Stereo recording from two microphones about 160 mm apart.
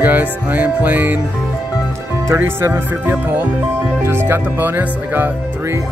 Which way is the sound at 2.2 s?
15° right (ahead or behind).